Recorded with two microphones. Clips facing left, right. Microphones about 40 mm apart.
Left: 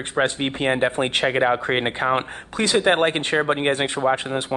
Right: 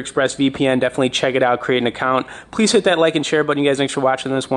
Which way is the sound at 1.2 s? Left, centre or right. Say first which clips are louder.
Right 3 dB; centre.